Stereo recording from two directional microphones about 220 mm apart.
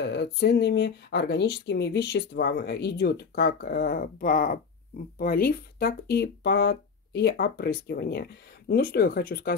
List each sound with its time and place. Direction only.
0.0 s speech: 50° left (ahead or behind)